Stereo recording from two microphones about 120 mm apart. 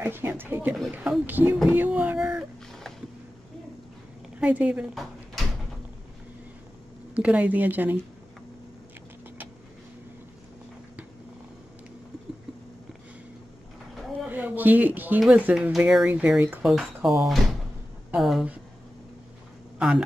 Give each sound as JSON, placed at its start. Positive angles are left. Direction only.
{"t": 0.0, "sound": "speech", "side_deg": -20}
{"t": 1.7, "sound": "a sound", "side_deg": -15}
{"t": 4.4, "sound": "a woman's voice", "side_deg": -10}
{"t": 7.2, "sound": "speech", "side_deg": -10}
{"t": 13.9, "sound": "a sound", "side_deg": -10}
{"t": 15.8, "sound": "speech", "side_deg": -10}